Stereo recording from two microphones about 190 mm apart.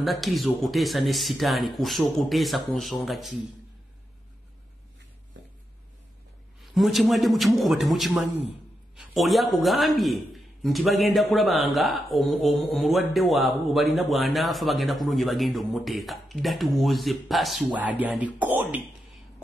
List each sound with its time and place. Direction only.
0.0 s a man's voice: centre (ahead or behind)
5.4 s a sound: 75° right (ahead or behind)
6.6 s a man's voice: centre (ahead or behind)